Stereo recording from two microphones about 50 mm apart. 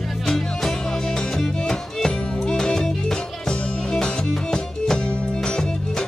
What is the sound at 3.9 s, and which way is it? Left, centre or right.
Music, centre.